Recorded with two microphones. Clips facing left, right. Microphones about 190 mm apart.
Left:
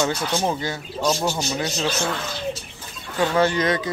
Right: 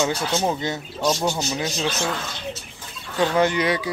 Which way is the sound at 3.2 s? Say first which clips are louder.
Even; 15° right (ahead or behind).